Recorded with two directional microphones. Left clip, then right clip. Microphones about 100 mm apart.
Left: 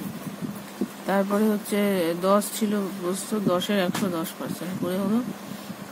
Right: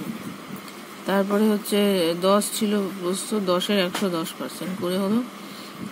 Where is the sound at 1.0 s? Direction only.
25° right (ahead or behind).